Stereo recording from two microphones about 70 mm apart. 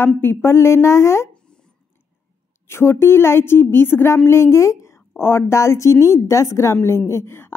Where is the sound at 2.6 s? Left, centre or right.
Left.